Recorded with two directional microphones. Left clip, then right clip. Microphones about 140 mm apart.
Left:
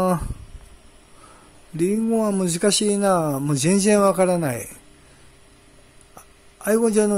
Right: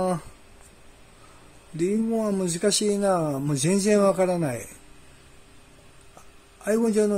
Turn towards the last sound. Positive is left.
turn(degrees=35)  # may be behind; listen again after turning